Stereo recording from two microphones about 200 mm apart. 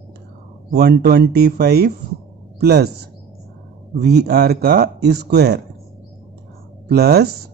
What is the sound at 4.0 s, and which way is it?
Speech, 55° right (ahead or behind).